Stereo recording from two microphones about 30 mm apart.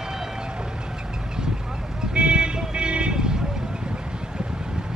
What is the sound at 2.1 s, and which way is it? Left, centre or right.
Vehicle, right.